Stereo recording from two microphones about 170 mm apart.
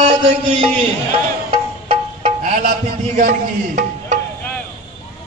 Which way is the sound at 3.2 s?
55° right (ahead or behind).